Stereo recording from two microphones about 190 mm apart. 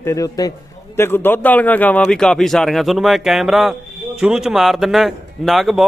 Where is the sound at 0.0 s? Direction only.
15° left (ahead or behind).